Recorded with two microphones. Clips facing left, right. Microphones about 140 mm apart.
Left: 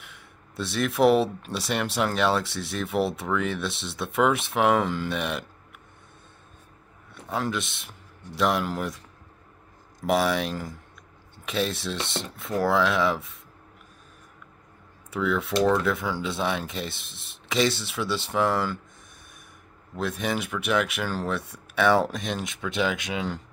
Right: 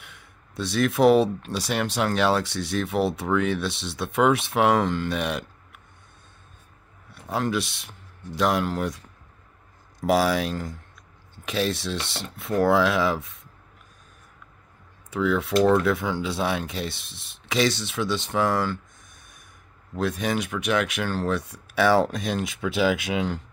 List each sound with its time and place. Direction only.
0.0 s speech: centre (ahead or behind)
7.3 s speech: centre (ahead or behind)
10.0 s speech: 5° right (ahead or behind)
15.0 s speech: centre (ahead or behind)
20.0 s speech: centre (ahead or behind)